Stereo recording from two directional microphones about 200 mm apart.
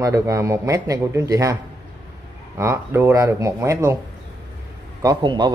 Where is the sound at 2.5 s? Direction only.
10° right (ahead or behind).